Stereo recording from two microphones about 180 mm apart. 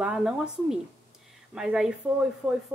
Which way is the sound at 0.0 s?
5° right (ahead or behind).